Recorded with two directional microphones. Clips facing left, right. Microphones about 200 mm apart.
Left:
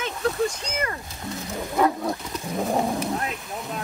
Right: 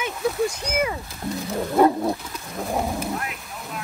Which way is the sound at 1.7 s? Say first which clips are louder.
Right 5 dB; 30° right (ahead or behind).